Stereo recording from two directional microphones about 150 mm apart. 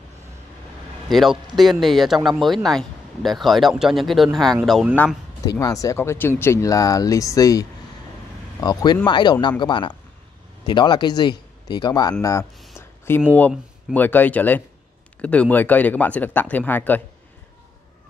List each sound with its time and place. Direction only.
1.0 s speech: centre (ahead or behind)
5.4 s speech: 25° left (ahead or behind)
12.7 s a sound: 15° left (ahead or behind)
13.9 s speech: 10° left (ahead or behind)